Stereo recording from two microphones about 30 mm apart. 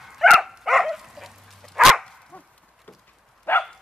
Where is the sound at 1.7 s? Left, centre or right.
Centre.